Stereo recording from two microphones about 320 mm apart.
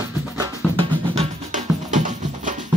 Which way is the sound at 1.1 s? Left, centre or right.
Right.